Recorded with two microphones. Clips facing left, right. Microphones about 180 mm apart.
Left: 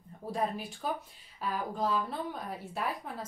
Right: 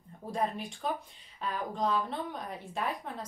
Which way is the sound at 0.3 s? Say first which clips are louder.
Even; 5° left (ahead or behind).